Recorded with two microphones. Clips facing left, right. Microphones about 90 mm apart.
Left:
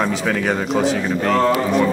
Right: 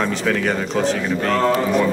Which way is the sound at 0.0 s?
5° left (ahead or behind).